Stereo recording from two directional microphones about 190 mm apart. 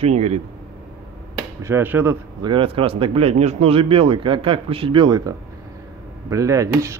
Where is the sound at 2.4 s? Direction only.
25° right (ahead or behind).